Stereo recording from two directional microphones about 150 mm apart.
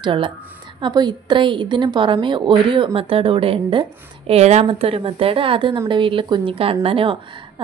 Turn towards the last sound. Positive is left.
turn(degrees=-40)  # may be behind; listen again after turning